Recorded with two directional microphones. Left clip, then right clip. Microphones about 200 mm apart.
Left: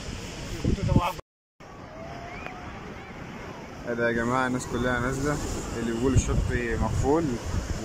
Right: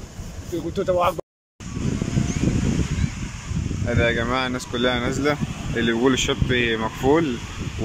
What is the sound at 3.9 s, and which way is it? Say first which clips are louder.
Speech: right 4 dB; 5° right (ahead or behind).